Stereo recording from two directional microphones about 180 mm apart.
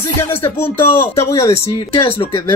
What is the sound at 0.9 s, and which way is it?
Speech, 15° left (ahead or behind).